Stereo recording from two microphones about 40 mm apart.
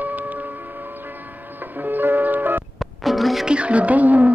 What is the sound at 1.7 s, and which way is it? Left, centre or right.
Music, right.